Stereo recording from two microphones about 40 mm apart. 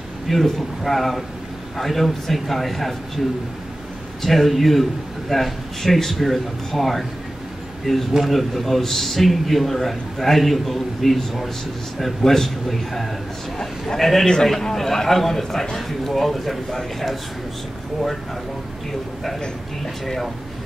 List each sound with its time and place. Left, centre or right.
0.3 s a man's voice: centre
4.2 s a man's voice: centre